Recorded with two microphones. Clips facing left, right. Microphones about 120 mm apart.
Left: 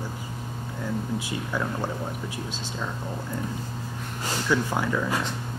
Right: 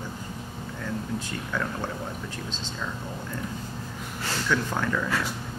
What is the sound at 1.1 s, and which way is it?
Speech, 10° left (ahead or behind).